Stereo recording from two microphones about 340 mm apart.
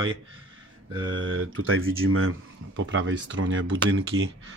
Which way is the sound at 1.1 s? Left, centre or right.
Right.